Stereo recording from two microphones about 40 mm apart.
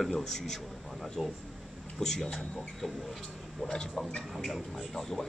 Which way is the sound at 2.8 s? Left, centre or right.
Centre.